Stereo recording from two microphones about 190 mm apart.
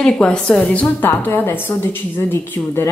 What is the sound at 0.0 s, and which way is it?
A woman's voice, 5° left (ahead or behind).